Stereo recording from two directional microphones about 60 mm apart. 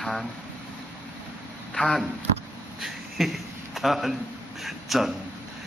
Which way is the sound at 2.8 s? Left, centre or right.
Centre.